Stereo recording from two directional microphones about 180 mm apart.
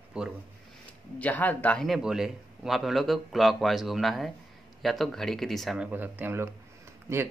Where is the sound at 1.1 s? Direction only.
10° left (ahead or behind).